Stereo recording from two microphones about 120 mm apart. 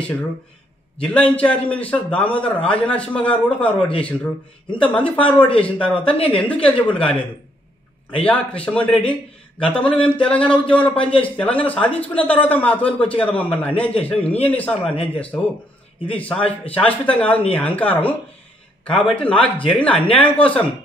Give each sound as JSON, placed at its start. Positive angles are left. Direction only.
{"t": 0.9, "sound": "a man's voice", "side_deg": 10}
{"t": 8.2, "sound": "a man's voice", "side_deg": 10}
{"t": 16.1, "sound": "a man's voice", "side_deg": 10}